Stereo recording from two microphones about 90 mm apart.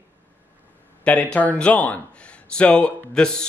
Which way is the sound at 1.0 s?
15° left (ahead or behind).